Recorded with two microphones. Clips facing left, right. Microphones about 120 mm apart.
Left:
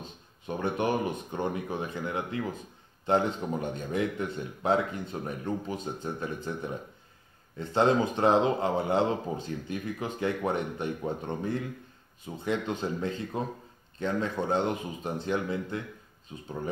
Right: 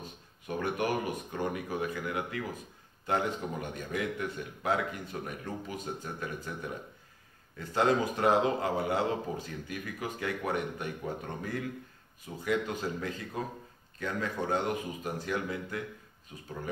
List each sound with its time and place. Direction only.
0.0 s speech: 25° left (ahead or behind)